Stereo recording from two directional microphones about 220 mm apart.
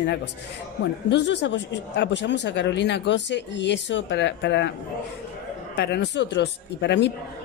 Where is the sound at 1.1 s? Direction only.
55° left (ahead or behind).